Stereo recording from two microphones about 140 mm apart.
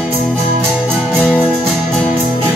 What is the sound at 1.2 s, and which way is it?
Music, 10° right (ahead or behind).